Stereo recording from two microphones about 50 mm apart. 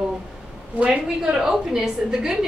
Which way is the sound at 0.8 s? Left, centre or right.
Centre.